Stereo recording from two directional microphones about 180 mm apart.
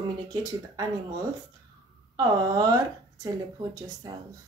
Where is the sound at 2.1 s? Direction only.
20° right (ahead or behind).